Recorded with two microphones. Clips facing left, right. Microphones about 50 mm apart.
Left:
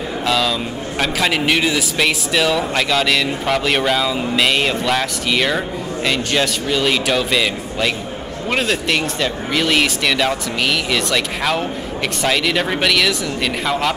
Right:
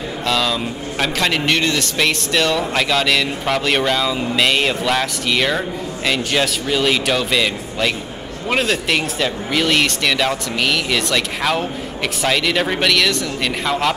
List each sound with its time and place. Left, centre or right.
0.2 s speech: centre